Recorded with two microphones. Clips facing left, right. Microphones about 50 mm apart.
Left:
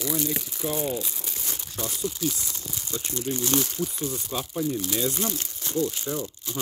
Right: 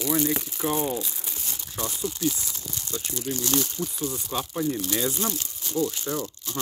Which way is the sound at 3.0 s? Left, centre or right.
Centre.